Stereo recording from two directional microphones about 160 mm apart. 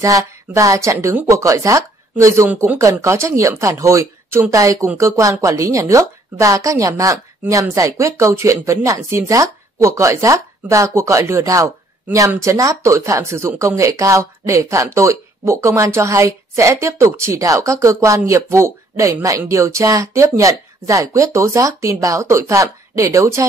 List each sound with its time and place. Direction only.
0.0 s speech: 20° right (ahead or behind)